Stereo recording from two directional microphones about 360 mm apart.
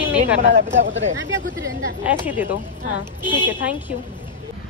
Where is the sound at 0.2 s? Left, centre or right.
Centre.